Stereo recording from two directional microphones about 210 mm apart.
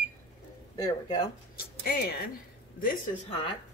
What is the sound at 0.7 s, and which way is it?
Speech, 20° left (ahead or behind).